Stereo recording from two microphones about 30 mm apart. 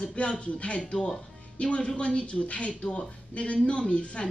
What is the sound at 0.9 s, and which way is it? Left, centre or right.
Speech, left.